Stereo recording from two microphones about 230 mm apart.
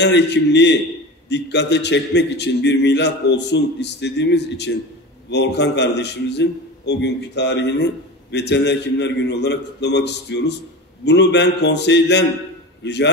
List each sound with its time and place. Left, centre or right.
0.0 s a man's voice: left